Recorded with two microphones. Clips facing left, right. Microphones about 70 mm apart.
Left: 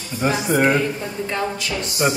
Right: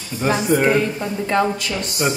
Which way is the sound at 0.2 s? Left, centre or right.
Centre.